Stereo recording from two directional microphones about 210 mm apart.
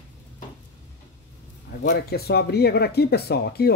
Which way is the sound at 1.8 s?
50° left (ahead or behind).